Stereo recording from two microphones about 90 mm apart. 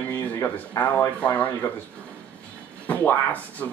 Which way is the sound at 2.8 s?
20° left (ahead or behind).